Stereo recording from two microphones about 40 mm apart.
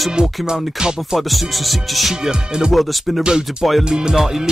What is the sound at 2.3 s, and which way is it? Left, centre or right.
Music, centre.